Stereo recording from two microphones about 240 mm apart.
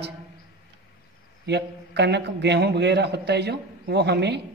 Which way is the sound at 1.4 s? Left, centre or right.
Right.